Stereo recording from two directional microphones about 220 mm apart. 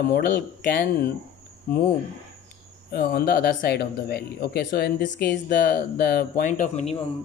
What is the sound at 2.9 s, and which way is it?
Speech, 45° left (ahead or behind).